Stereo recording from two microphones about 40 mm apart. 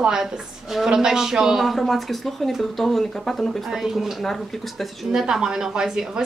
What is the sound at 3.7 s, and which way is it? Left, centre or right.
Speech, centre.